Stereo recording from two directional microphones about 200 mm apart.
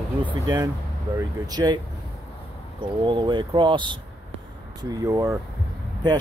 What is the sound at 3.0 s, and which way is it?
Speech, 25° right (ahead or behind).